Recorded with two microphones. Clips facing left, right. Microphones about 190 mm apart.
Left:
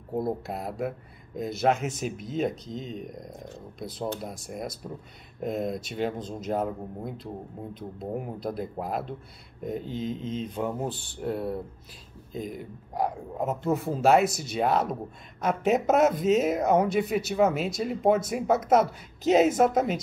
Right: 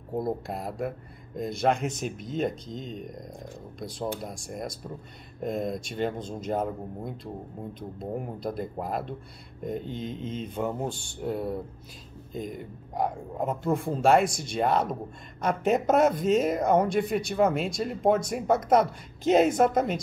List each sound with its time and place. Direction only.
0.1 s speech: centre (ahead or behind)